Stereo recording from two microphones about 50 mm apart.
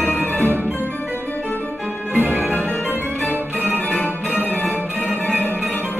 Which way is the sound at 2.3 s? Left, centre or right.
Left.